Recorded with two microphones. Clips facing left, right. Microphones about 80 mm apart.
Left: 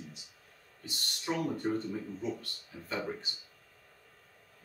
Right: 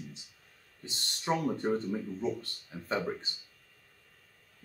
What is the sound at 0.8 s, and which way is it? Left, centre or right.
Speech, right.